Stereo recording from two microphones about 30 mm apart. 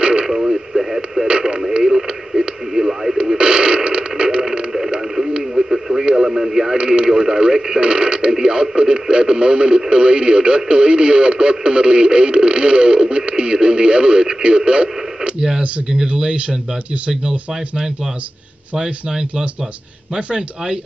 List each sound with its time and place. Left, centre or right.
0.0 s radio: right
0.3 s radio: centre
3.3 s mechanisms: right
5.5 s radio: centre
6.8 s radio: right
7.1 s speech: centre
7.8 s speech: right
16.1 s speech: right
20.2 s speech: right